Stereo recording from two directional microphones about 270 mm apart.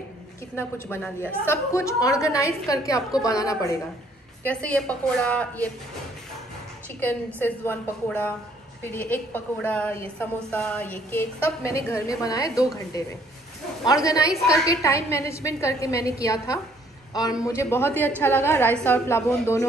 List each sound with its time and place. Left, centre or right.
0.6 s a woman's voice: centre
7.0 s a woman's voice: centre
14.0 s a woman's voice: centre